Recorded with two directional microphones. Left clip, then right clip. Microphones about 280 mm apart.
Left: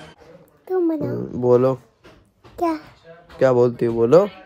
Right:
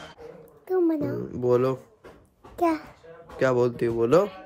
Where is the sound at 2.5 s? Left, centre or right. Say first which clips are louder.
Left 2 dB; centre.